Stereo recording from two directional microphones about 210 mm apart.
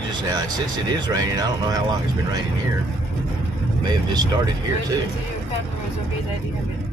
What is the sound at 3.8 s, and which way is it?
Speech, 20° right (ahead or behind).